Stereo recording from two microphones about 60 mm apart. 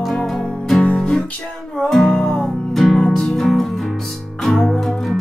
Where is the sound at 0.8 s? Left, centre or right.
Centre.